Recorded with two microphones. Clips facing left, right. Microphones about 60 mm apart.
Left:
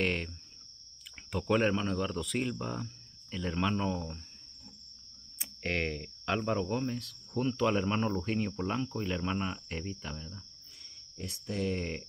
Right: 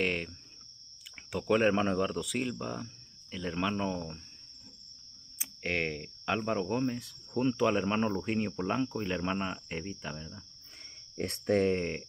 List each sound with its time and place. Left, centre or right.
0.0 s speech: centre
1.1 s a sound: centre
2.0 s speech: centre
5.4 s speech: centre
11.1 s speech: right
11.7 s speech: centre